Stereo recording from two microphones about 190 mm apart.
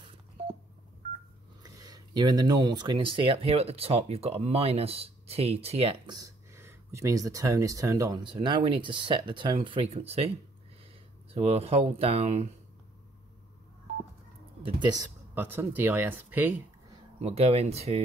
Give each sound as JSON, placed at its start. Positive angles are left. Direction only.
{"t": 0.0, "sound": "telephone dialing", "side_deg": -30}
{"t": 1.6, "sound": "speech", "side_deg": -20}
{"t": 6.1, "sound": "speech", "side_deg": -15}
{"t": 11.3, "sound": "speech", "side_deg": -35}
{"t": 14.6, "sound": "speech", "side_deg": -20}
{"t": 17.2, "sound": "speech", "side_deg": -35}